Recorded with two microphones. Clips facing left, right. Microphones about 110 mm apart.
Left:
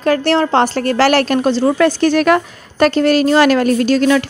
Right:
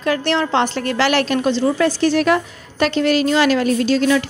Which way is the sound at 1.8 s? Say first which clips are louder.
Left 4 dB; 55° left (ahead or behind).